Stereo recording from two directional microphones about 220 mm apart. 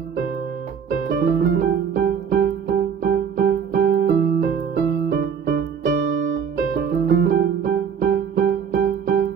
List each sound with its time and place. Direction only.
1.0 s music: 45° right (ahead or behind)
6.2 s piano: 55° right (ahead or behind)